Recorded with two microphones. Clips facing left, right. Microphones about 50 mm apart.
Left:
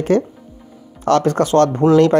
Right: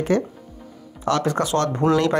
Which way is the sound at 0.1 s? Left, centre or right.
Left.